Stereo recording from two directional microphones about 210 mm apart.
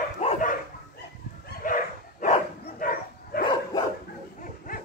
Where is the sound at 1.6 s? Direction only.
40° left (ahead or behind).